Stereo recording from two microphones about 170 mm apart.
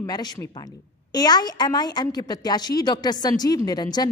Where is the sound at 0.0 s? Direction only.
25° left (ahead or behind).